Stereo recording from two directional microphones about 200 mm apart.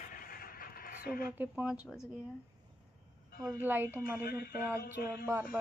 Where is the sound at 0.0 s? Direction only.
45° left (ahead or behind).